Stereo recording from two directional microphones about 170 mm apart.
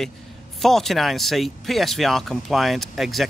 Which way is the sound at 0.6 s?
Centre (ahead or behind).